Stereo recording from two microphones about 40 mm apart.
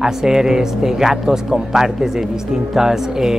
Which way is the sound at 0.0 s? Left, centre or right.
Centre.